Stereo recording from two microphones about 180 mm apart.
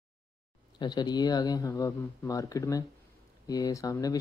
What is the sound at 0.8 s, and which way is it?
Speech, 25° left (ahead or behind).